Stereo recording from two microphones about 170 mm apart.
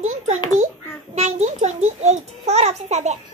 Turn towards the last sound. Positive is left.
turn(degrees=-40)  # may be behind; listen again after turning